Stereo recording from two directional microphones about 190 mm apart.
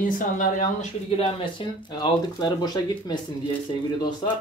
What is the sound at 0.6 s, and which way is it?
Speech, 40° left (ahead or behind).